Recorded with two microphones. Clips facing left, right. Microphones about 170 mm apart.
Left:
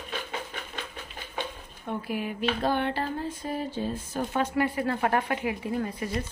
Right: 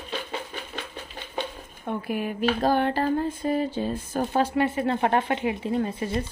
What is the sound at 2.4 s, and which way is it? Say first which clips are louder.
Speech: right 5 dB; 40° right (ahead or behind).